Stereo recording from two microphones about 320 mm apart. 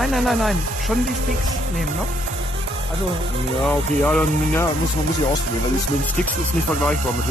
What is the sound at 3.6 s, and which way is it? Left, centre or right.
Speech, centre.